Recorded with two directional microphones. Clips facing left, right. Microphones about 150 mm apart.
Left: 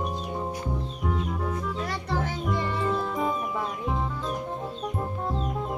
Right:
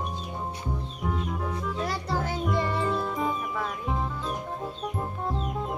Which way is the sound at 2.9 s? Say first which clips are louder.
Left 1 dB; centre (ahead or behind).